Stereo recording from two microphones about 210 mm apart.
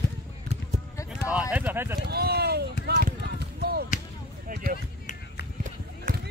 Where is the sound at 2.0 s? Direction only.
50° right (ahead or behind).